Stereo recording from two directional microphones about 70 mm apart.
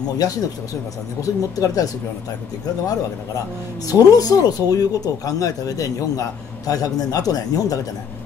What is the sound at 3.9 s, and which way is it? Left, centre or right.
Speech, left.